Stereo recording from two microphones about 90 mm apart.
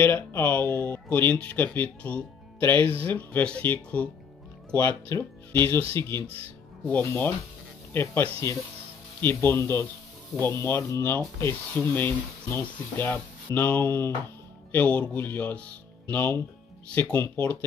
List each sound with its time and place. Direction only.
0.0 s speech: 25° left (ahead or behind)